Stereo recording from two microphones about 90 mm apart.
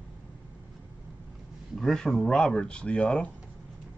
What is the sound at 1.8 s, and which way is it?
Speech, 5° left (ahead or behind).